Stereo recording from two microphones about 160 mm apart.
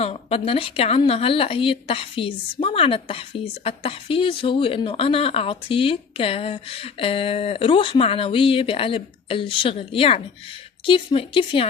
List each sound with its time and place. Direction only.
0.0 s a woman's voice: 40° left (ahead or behind)